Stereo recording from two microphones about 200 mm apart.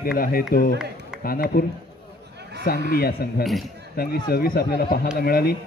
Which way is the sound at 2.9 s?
50° left (ahead or behind).